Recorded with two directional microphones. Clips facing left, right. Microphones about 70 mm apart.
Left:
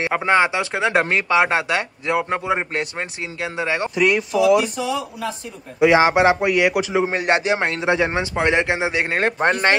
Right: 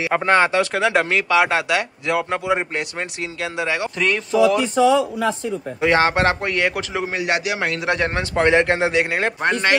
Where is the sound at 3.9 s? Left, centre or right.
Centre.